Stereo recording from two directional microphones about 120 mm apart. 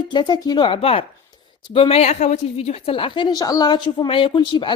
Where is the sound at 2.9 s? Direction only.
45° left (ahead or behind).